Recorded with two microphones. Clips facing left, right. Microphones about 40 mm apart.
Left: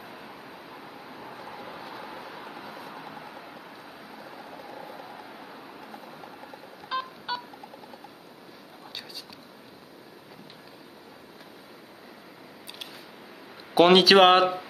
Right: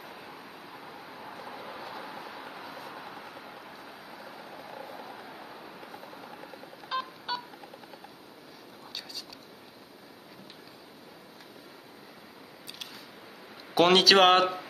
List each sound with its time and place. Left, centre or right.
0.0 s vehicle: centre
6.9 s telephone dialing: centre
13.7 s speech: centre